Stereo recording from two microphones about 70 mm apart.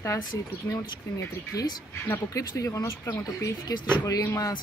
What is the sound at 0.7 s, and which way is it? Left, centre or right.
Speech, left.